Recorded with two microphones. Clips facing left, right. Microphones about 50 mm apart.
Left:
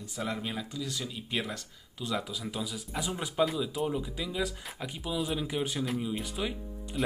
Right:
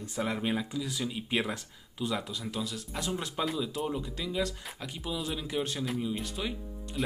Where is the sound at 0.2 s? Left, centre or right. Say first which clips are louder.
Right 4 dB; centre.